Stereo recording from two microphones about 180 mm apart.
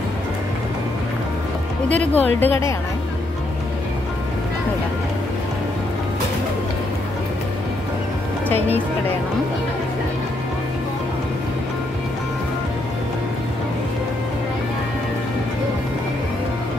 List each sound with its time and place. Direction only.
2.0 s speech: 10° left (ahead or behind)